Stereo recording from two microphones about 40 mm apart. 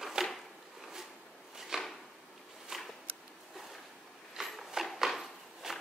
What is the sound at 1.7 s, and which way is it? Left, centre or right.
Drawer open or close, centre.